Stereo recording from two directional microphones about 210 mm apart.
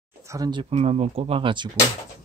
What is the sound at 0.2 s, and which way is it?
Speech, 15° right (ahead or behind).